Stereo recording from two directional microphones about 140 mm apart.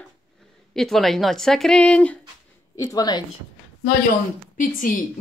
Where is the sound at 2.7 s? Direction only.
25° left (ahead or behind).